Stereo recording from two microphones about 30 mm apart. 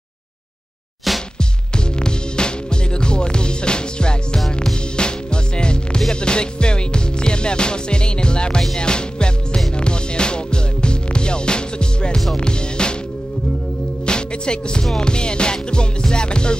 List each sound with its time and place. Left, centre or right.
2.0 s music: left
14.0 s music: left